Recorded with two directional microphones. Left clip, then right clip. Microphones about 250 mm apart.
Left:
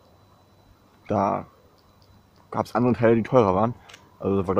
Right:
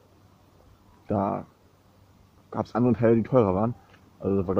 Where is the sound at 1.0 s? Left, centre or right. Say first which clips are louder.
Left 4 dB; centre.